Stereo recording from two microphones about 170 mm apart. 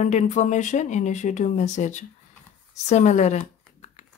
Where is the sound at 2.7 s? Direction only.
45° left (ahead or behind).